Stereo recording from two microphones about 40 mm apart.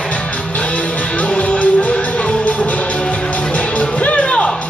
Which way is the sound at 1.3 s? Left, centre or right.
Left.